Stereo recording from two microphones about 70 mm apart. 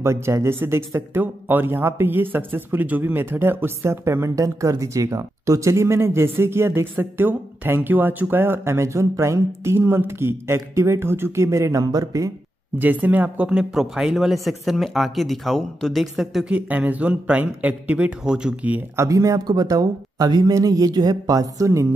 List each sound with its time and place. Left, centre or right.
0.0 s speech: right
12.7 s a man's voice: right
13.5 s speech: centre
16.4 s a man's voice: right
18.9 s speech: right